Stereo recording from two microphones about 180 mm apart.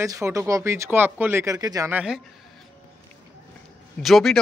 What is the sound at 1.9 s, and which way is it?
Speech, 5° right (ahead or behind).